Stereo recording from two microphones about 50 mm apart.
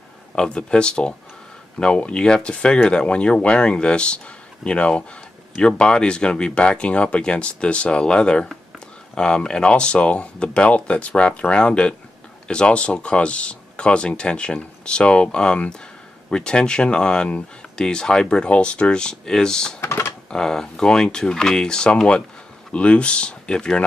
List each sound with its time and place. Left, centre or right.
0.4 s speech: centre
19.8 s computer keyboard: left
20.2 s speech: centre